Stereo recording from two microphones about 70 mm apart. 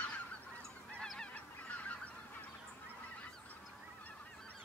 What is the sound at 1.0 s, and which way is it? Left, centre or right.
Goose, centre.